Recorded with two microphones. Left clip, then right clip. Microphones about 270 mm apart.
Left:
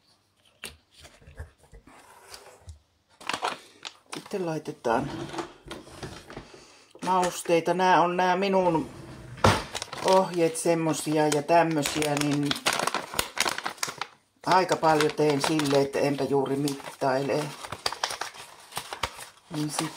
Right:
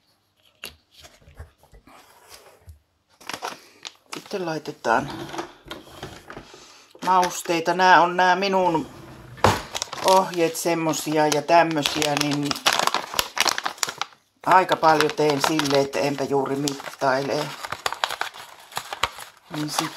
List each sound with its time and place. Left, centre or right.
0.6 s shuffling cards: centre
3.3 s a sound: centre
4.3 s speech: right
5.7 s a sound: right
7.1 s speech: right
9.7 s crumpling: right
10.1 s speech: right
11.2 s crumpling: right
14.5 s speech: right
17.3 s crumpling: right
18.8 s shuffling cards: right